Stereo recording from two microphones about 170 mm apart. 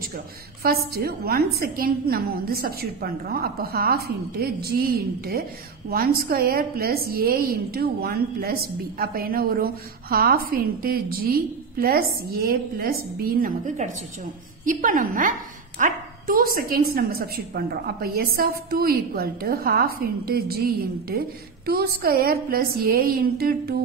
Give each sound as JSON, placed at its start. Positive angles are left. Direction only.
{"t": 0.6, "sound": "a woman's voice", "side_deg": -65}